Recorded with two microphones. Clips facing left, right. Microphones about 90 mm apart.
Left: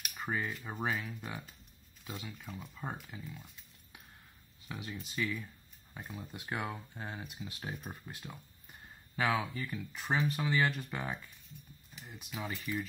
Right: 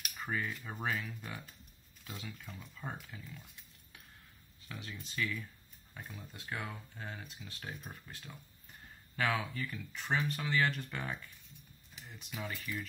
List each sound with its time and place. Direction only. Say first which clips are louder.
0.0 s a sound: left 2 dB; 5° left (ahead or behind)
0.3 s speech: left 1 dB; 15° left (ahead or behind)
12.1 s speech: left 2 dB; 5° left (ahead or behind)
12.4 s speech: left 4 dB; 15° left (ahead or behind)